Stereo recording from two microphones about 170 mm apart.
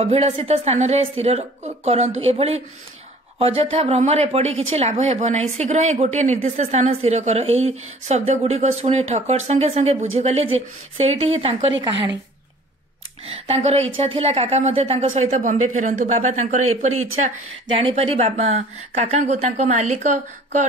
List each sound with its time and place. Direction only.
0.0 s speech: 35° right (ahead or behind)
13.3 s speech: 35° right (ahead or behind)
17.7 s speech: 35° right (ahead or behind)